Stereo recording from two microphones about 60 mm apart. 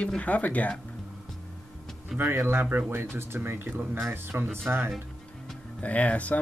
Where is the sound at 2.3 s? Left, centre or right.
Right.